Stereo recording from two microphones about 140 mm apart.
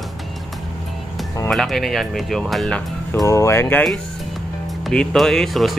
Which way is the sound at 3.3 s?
20° left (ahead or behind).